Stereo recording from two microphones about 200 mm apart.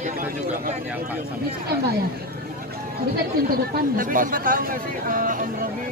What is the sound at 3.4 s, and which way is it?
Speech, 45° right (ahead or behind).